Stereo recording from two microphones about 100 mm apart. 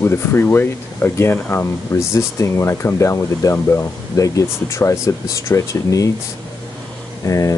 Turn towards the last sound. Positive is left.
turn(degrees=35)  # may be behind; listen again after turning